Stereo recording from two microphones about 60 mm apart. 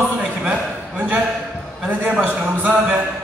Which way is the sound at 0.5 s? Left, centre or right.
Right.